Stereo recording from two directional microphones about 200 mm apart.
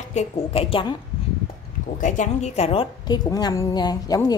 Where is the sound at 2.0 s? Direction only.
35° left (ahead or behind); by 4.3 s 20° left (ahead or behind).